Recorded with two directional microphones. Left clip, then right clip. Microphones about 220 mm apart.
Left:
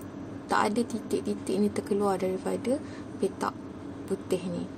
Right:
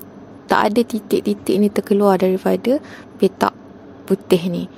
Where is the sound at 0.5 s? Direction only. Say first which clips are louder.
Right 11 dB; 40° right (ahead or behind).